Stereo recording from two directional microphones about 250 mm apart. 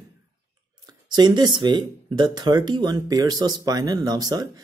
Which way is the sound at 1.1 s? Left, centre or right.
Centre.